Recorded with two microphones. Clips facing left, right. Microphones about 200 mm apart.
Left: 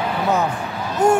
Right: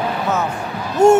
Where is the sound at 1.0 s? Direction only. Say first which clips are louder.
Right 5 dB; 25° right (ahead or behind).